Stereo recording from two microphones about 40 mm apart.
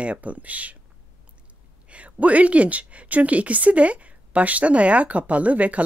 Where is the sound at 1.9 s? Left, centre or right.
Right.